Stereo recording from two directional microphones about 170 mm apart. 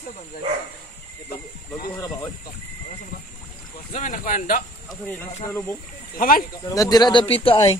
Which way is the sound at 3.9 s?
45° left (ahead or behind).